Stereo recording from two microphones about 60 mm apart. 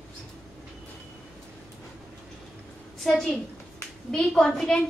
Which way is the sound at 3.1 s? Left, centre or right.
Centre.